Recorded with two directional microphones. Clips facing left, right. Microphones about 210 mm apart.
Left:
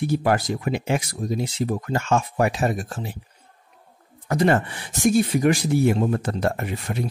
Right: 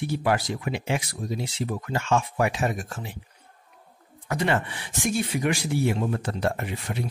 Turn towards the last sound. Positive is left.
turn(degrees=45)  # may be behind; listen again after turning